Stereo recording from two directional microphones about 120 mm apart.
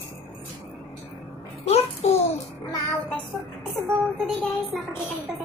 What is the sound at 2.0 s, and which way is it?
Music, 60° left (ahead or behind).